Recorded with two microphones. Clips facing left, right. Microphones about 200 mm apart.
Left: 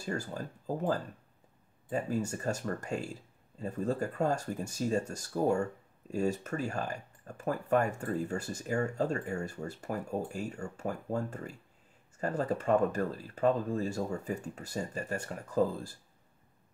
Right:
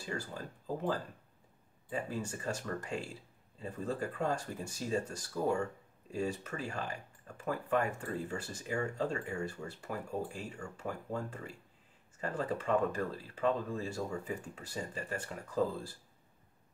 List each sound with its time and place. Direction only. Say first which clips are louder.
0.0 s speech: left 4 dB; 45° left (ahead or behind)
1.9 s speech: left 5 dB; 45° left (ahead or behind)